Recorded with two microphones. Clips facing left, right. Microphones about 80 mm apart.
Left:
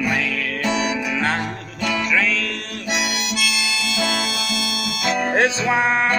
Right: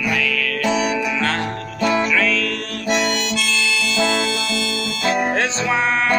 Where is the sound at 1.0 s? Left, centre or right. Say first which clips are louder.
Right 1 dB; centre.